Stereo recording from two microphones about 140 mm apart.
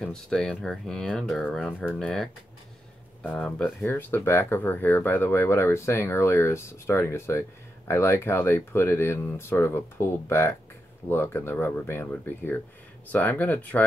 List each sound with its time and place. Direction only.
0.0 s speech: 5° left (ahead or behind)